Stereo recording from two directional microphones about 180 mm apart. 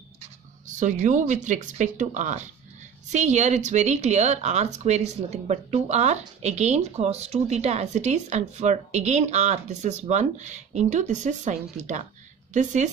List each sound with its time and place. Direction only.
0.2 s speech: 45° right (ahead or behind)